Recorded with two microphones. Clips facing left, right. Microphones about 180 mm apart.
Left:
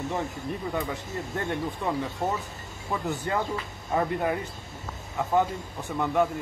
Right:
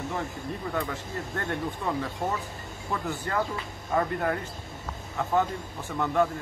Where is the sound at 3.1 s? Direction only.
20° left (ahead or behind).